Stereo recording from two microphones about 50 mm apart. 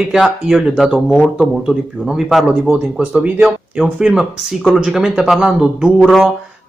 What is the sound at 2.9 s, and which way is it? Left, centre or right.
Speech, right.